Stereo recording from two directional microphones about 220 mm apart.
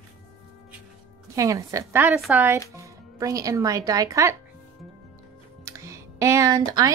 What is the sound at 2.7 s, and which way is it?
Speech, 15° right (ahead or behind).